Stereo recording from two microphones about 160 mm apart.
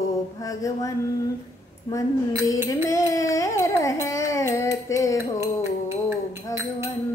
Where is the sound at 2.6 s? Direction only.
20° left (ahead or behind).